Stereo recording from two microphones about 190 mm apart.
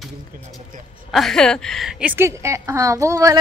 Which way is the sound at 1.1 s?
Centre (ahead or behind).